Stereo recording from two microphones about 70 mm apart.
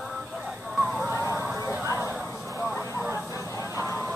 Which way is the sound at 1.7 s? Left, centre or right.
Right.